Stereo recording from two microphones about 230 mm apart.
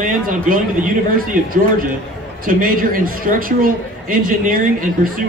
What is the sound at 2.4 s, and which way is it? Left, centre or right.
A man's voice, right.